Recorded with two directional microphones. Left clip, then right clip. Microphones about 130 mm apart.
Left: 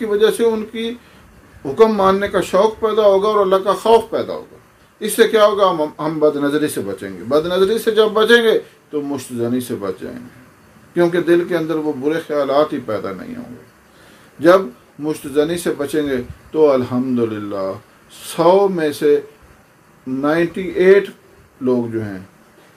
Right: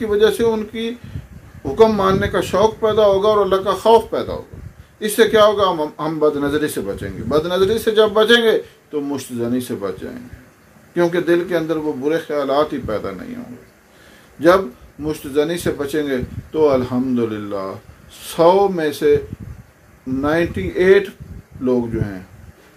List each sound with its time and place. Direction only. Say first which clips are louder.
0.0 s a man's voice: left 1 dB; 15° right (ahead or behind)
15.0 s a man's voice: left 1 dB; 15° right (ahead or behind)
20.2 s a man's voice: left 1 dB; 15° right (ahead or behind)